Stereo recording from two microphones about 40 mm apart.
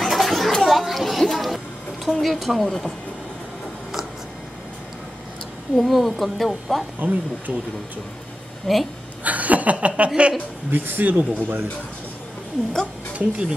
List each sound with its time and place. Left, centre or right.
0.0 s children playing: centre
0.6 s a sound: centre
2.0 s speech: centre
5.8 s speech: centre
7.0 s speech: right
8.7 s speech: centre
9.2 s speech: right
10.7 s speech: right
13.2 s speech: right